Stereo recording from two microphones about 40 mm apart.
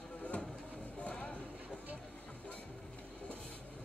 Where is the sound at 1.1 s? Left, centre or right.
Left.